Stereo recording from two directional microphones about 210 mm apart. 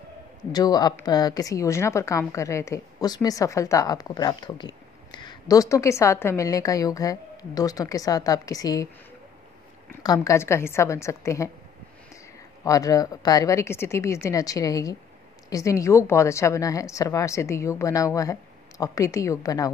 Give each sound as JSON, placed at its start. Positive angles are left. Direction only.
{"t": 0.5, "sound": "a woman's voice", "side_deg": 20}
{"t": 10.0, "sound": "a woman's voice", "side_deg": 15}
{"t": 12.6, "sound": "a woman's voice", "side_deg": 15}